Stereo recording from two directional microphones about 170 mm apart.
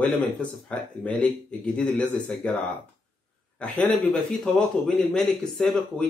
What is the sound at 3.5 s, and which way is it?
A man's voice, 5° left (ahead or behind).